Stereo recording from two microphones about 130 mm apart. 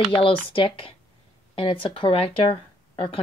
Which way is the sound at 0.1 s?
45° left (ahead or behind).